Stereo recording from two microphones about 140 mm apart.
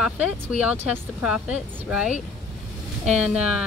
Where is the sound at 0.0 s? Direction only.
10° right (ahead or behind).